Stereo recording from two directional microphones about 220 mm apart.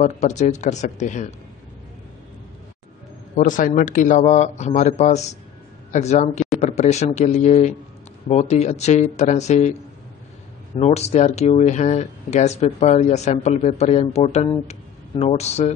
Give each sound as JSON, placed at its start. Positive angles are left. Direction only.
{"t": 0.0, "sound": "speech", "side_deg": 30}
{"t": 3.3, "sound": "speech", "side_deg": 35}
{"t": 10.8, "sound": "speech", "side_deg": 30}